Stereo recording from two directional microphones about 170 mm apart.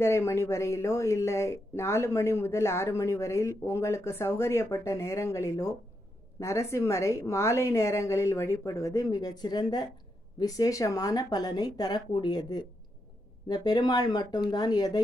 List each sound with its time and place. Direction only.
0.0 s speech: 15° left (ahead or behind)